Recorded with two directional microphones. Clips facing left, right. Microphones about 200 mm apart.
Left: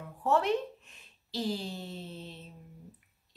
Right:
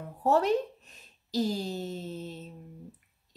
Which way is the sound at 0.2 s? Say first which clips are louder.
Right 3 dB; 40° right (ahead or behind).